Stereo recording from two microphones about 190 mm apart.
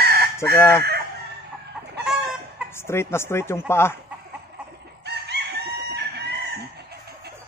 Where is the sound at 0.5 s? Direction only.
10° left (ahead or behind).